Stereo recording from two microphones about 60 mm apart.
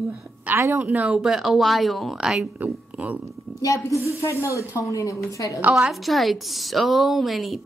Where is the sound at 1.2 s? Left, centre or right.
Centre.